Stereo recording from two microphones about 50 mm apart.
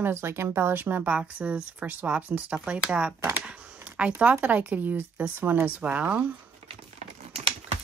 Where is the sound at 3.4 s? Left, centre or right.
Right.